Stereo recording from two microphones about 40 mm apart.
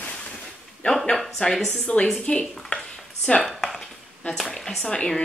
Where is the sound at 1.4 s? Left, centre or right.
Left.